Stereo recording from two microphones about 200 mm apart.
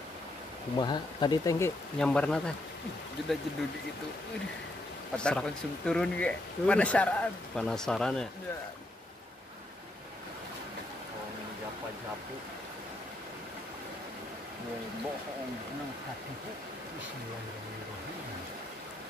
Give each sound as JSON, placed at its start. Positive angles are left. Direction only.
{"t": 0.7, "sound": "speech", "side_deg": 20}
{"t": 2.0, "sound": "speech", "side_deg": 5}
{"t": 5.1, "sound": "speech", "side_deg": 5}